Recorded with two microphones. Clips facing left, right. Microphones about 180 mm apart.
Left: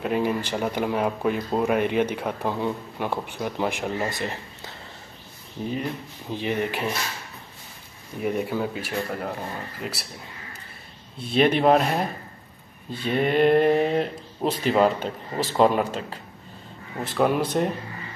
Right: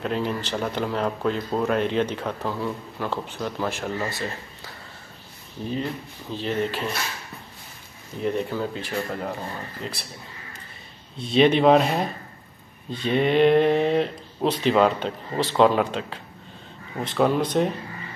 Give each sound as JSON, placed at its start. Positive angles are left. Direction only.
{"t": 0.0, "sound": "speech", "side_deg": 10}
{"t": 6.3, "sound": "speech", "side_deg": 15}
{"t": 8.2, "sound": "speech", "side_deg": 10}
{"t": 11.1, "sound": "speech", "side_deg": 55}
{"t": 11.6, "sound": "speech", "side_deg": 5}
{"t": 17.0, "sound": "speech", "side_deg": 10}